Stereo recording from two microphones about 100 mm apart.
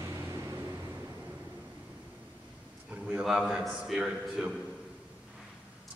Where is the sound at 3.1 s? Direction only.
5° right (ahead or behind).